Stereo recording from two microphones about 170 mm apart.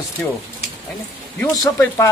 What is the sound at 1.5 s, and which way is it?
Speech, 20° left (ahead or behind).